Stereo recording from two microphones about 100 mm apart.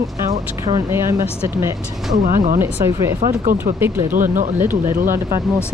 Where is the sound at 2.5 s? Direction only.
25° right (ahead or behind).